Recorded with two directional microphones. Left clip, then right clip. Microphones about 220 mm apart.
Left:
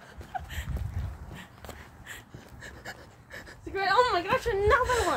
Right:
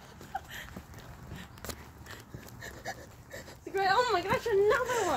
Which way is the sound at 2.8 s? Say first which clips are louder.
Right 2 dB; 10° left (ahead or behind).